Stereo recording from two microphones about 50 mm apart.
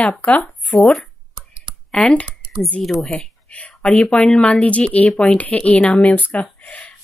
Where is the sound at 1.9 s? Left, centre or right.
Left.